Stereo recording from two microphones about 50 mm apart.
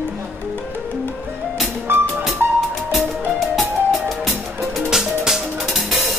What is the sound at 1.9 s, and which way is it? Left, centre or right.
Music, right.